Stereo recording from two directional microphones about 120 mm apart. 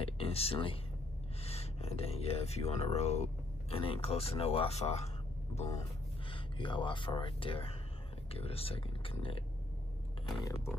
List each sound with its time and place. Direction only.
0.0 s speech: 55° left (ahead or behind)
3.7 s speech: 50° left (ahead or behind)
6.3 s speech: 45° left (ahead or behind)
10.4 s speech: 25° left (ahead or behind)